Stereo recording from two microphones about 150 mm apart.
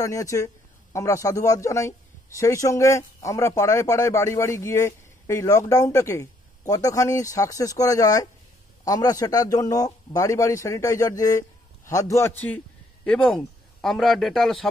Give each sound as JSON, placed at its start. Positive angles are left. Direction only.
{"t": 0.0, "sound": "a man's voice", "side_deg": 20}